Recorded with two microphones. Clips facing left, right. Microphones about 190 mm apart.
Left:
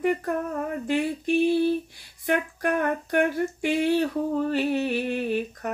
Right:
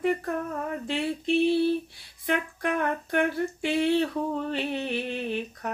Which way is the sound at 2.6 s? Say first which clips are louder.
Left 3 dB; 50° left (ahead or behind).